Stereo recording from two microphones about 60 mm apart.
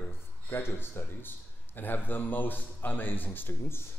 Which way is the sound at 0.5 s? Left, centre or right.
Left.